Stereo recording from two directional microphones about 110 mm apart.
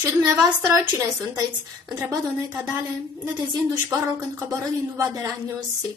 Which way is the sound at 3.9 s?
25° right (ahead or behind).